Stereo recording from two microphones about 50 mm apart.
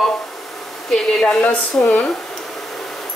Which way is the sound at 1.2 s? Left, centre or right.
Centre.